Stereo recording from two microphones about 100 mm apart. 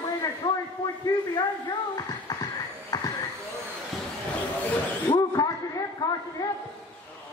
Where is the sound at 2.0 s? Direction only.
40° left (ahead or behind).